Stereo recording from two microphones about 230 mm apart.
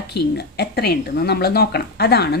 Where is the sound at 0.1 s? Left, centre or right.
Left.